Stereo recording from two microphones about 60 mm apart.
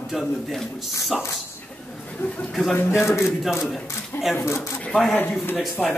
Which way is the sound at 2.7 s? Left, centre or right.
Left.